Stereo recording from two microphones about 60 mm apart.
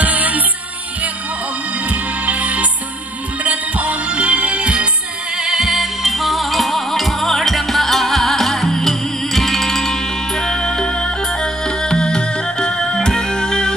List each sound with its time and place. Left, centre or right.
0.0 s music: right
1.9 s music: right
5.4 s music: centre